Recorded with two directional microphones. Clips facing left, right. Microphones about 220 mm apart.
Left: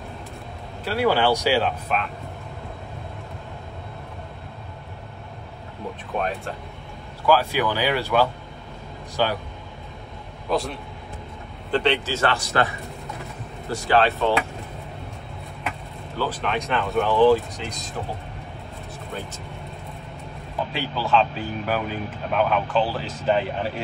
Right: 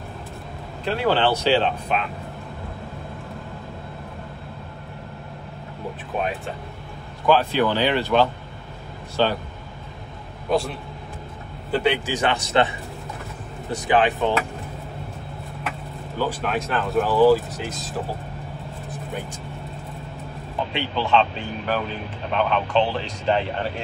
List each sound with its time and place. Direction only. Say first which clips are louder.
0.8 s speech: even; 10° left (ahead or behind)
6.1 s speech: even; centre (ahead or behind)
7.2 s speech: right 1 dB; 10° left (ahead or behind)
10.5 s speech: right 2 dB; centre (ahead or behind); by 14.3 s 15° right (ahead or behind)
16.2 s speech: right 1 dB; 10° right (ahead or behind)
20.7 s speech: right 1 dB; centre (ahead or behind)